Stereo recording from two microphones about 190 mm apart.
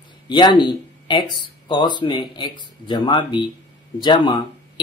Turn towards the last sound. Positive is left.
turn(degrees=25)  # may be behind; listen again after turning